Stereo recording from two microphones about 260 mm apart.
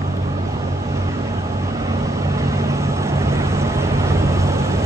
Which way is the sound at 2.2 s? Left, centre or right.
Centre.